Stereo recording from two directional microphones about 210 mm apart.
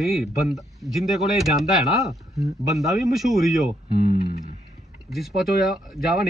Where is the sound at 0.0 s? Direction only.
Centre (ahead or behind).